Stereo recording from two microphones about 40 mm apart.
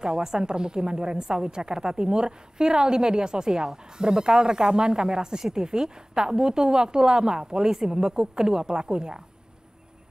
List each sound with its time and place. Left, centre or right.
0.0 s a woman's voice: centre